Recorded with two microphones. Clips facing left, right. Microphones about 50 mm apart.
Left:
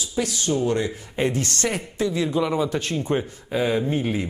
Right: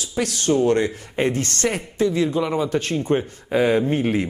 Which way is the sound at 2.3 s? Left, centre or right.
Right.